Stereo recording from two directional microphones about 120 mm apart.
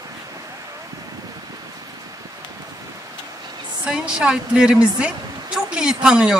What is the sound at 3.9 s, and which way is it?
A woman's voice, 10° right (ahead or behind).